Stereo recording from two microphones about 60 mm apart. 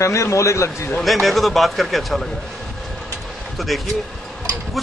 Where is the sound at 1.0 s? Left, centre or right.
Centre.